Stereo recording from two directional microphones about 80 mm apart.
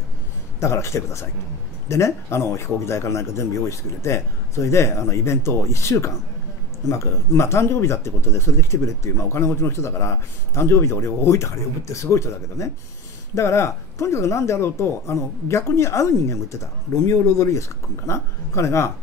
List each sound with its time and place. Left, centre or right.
0.6 s speech: left
17.4 s speech: left